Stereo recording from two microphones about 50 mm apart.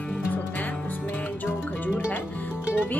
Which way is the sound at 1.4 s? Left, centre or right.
Left.